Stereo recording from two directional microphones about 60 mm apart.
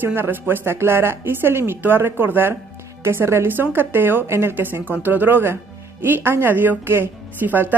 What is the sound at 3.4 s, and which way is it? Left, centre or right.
A woman's voice, right.